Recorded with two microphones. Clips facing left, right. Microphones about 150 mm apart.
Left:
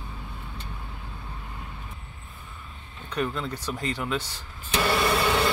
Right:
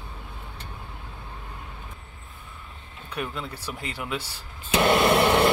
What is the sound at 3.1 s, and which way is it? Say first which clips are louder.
Speech: left 4 dB; 10° right (ahead or behind).